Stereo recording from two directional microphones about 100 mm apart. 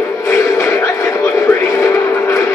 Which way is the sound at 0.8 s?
30° left (ahead or behind).